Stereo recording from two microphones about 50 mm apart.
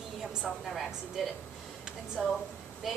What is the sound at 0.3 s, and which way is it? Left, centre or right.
A woman's voice, centre.